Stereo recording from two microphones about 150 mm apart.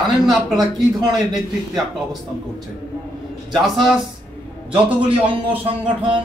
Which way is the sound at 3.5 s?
Centre (ahead or behind).